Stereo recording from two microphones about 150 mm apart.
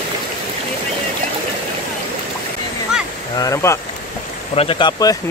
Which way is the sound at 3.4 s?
20° left (ahead or behind).